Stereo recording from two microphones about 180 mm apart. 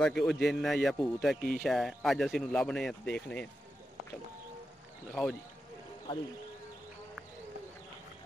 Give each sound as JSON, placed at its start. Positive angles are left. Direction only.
{"t": 0.0, "sound": "speech", "side_deg": 5}
{"t": 6.1, "sound": "speech", "side_deg": 25}